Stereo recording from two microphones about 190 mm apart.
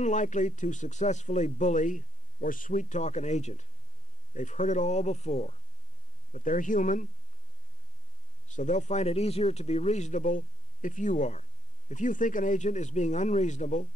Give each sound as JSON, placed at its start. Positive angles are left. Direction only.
{"t": 0.0, "sound": "speech", "side_deg": 40}
{"t": 8.5, "sound": "speech", "side_deg": 40}